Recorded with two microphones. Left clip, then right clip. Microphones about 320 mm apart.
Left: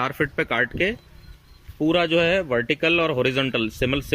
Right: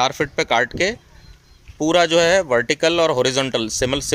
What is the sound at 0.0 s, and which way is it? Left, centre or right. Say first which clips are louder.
Speech: right 4 dB; centre.